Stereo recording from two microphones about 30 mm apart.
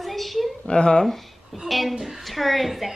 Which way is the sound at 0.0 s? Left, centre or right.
Centre.